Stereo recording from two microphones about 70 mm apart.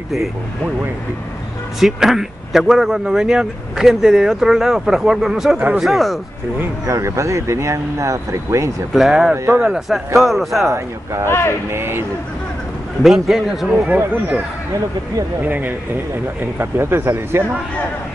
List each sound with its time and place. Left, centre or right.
1.8 s a man's voice: centre
6.9 s speech: right
8.9 s a man's voice: centre
11.2 s speech: left
11.7 s speech: right
13.0 s a man's voice: centre
13.8 s speech: right
15.4 s speech: right